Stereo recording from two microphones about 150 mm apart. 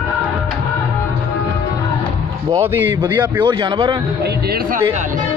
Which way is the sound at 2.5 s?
15° right (ahead or behind).